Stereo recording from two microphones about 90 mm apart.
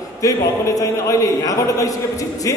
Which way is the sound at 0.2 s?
40° left (ahead or behind).